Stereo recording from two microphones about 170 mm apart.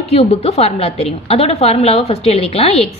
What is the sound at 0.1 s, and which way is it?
A woman's voice, 35° left (ahead or behind).